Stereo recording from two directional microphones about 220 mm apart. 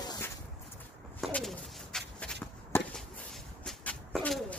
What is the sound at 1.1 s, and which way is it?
Bird, centre (ahead or behind).